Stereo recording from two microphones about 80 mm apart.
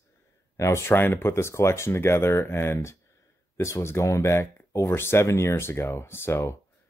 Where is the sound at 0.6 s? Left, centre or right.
Left.